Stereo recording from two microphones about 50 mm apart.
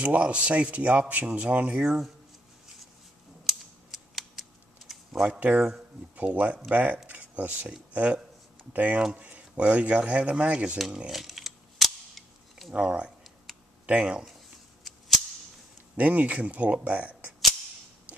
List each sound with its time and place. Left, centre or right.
0.0 s speech: right
1.8 s speech: centre
3.4 s scissors: centre
6.1 s speech: right
7.1 s a sound: right
7.9 s speech: right
11.1 s cap gun: centre
12.7 s speech: right
14.8 s cap gun: centre
16.0 s speech: right